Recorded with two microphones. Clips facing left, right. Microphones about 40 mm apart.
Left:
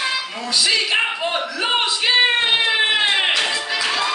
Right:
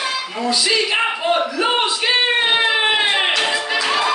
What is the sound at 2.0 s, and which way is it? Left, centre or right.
Music, centre.